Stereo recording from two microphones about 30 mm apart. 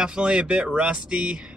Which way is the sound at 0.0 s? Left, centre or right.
Right.